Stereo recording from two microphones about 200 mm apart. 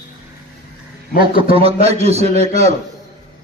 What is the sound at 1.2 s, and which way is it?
A man's voice, 25° right (ahead or behind).